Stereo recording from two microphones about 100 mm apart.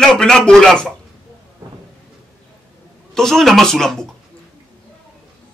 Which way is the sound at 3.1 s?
5° left (ahead or behind).